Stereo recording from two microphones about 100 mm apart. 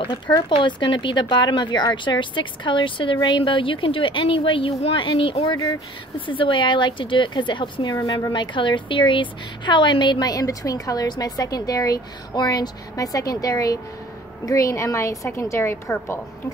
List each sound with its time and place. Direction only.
0.6 s speech: 55° left (ahead or behind)
5.4 s speech: 40° left (ahead or behind)
6.1 s a woman's voice: 60° left (ahead or behind); by 16.2 s 25° left (ahead or behind)